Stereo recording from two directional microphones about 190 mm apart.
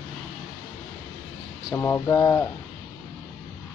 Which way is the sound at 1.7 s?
15° left (ahead or behind).